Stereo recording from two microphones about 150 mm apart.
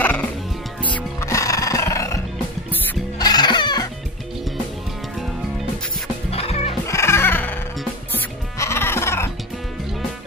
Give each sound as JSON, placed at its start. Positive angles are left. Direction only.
{"t": 0.0, "sound": "music", "side_deg": 10}
{"t": 6.3, "sound": "music", "side_deg": 40}
{"t": 6.9, "sound": "music", "side_deg": 20}